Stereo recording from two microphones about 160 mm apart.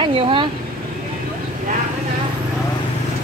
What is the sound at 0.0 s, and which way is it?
Vehicle, 35° right (ahead or behind).